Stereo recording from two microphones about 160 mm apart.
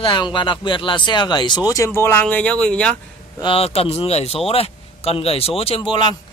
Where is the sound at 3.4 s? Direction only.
35° left (ahead or behind).